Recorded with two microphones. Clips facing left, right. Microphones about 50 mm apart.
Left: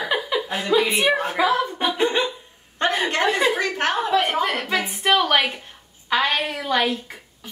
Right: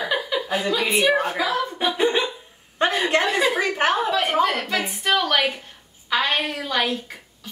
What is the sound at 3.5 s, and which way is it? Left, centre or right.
Speech, centre.